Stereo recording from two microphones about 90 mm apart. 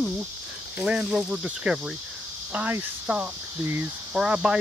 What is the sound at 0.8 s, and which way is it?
Speech, 10° right (ahead or behind).